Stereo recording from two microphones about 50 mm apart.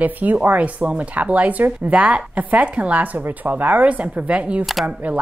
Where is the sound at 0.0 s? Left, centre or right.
Right.